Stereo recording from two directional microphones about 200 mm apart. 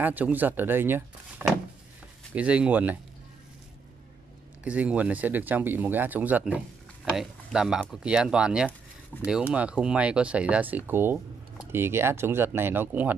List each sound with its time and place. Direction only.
0.0 s speech: 10° right (ahead or behind)
4.6 s speech: 5° right (ahead or behind)